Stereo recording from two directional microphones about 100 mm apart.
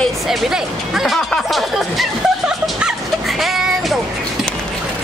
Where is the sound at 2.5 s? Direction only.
5° right (ahead or behind).